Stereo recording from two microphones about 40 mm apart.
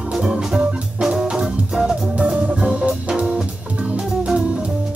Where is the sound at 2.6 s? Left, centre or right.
Right.